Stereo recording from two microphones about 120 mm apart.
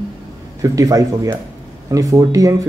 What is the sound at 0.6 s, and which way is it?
Speech, 30° right (ahead or behind).